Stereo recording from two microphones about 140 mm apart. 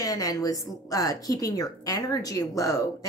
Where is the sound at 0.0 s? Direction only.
25° left (ahead or behind).